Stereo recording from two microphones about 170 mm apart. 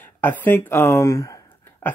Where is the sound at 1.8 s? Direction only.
10° left (ahead or behind).